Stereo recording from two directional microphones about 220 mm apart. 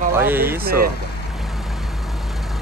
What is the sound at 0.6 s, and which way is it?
Speech, 45° right (ahead or behind).